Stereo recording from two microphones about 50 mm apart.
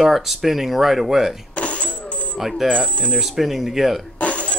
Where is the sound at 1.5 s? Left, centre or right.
Left.